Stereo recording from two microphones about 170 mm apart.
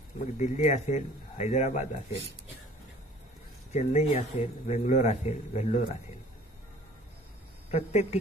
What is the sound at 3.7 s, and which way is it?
A man's voice, 40° left (ahead or behind).